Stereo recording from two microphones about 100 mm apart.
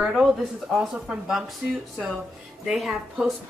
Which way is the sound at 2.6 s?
Centre (ahead or behind).